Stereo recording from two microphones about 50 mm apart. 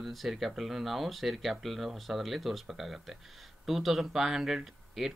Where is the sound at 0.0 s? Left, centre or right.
Centre.